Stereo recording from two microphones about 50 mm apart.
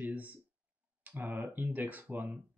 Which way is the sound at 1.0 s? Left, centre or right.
Right.